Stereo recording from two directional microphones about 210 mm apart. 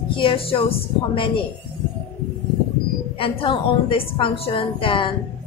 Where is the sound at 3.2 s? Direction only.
25° left (ahead or behind).